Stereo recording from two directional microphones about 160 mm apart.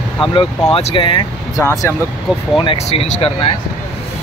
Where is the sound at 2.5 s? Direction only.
35° left (ahead or behind).